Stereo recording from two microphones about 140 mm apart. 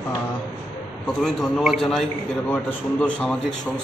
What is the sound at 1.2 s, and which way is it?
A man's voice, centre (ahead or behind).